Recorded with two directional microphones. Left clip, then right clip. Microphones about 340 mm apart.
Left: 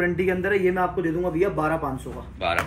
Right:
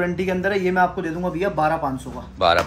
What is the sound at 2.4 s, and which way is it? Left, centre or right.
Speech, centre.